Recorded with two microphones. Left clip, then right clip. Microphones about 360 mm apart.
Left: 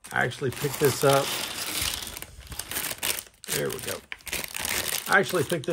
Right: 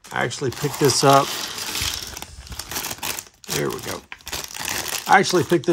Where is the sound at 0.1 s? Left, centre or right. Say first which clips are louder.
Right 3 dB; centre.